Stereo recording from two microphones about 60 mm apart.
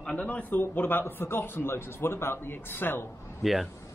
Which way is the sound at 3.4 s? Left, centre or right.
Centre.